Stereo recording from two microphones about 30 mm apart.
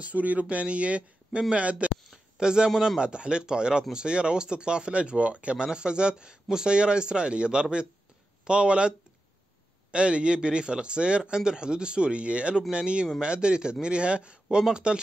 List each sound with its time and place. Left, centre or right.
0.0 s speech: right
2.3 s a man's voice: right
5.7 s speech: right